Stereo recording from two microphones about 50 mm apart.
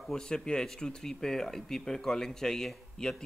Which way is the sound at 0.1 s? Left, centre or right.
Centre.